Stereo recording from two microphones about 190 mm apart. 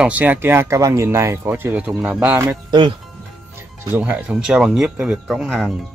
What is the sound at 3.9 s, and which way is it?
Speech, 10° right (ahead or behind).